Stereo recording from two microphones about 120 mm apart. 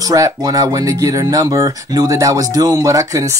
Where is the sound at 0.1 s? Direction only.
30° right (ahead or behind).